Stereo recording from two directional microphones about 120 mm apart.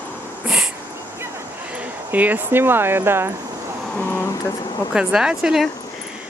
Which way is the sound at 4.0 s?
20° left (ahead or behind).